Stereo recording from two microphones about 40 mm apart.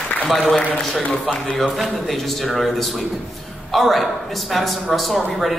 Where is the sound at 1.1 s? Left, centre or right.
Centre.